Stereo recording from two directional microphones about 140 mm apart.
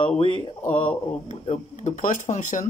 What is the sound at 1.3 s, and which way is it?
Speech, 60° left (ahead or behind).